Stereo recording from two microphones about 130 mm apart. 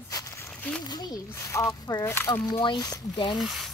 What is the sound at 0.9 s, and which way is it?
Speech, 30° left (ahead or behind).